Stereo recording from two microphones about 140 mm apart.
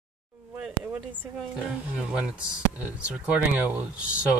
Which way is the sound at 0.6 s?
10° right (ahead or behind).